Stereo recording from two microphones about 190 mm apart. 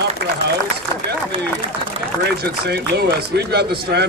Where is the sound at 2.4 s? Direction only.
55° right (ahead or behind).